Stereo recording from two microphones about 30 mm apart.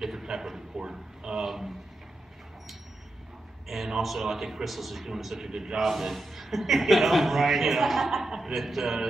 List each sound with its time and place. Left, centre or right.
0.0 s a sound: centre
0.7 s a man's voice: right
3.6 s a man's voice: centre
5.8 s a man's voice: centre